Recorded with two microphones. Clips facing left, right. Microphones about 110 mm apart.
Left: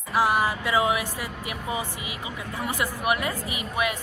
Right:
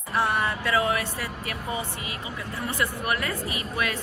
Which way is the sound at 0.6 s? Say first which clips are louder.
Left 1 dB; 20° left (ahead or behind).